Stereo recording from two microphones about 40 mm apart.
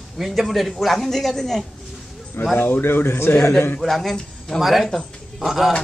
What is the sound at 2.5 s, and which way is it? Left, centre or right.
Speech, left.